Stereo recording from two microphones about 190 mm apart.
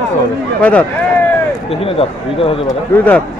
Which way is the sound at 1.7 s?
30° left (ahead or behind).